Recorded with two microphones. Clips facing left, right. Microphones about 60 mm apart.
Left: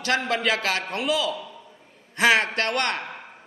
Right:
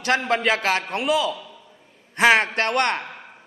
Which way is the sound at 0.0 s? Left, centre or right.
Right.